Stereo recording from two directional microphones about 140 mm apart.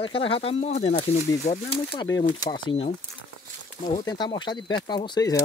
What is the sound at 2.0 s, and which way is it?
Speech, 30° left (ahead or behind).